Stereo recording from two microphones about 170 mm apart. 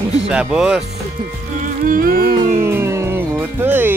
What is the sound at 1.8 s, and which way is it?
Music, 55° right (ahead or behind).